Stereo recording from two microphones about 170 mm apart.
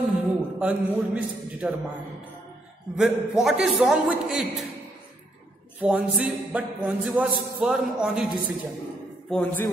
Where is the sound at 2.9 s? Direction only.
Centre (ahead or behind).